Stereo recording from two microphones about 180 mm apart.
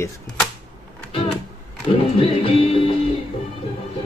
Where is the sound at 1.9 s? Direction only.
30° left (ahead or behind).